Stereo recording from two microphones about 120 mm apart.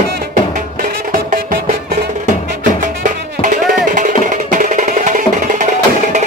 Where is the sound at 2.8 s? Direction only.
90° right.